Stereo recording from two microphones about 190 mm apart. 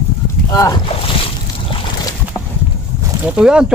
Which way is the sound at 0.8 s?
30° left (ahead or behind).